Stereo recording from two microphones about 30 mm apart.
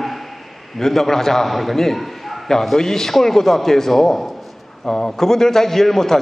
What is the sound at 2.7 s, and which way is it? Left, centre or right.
A man's voice, centre.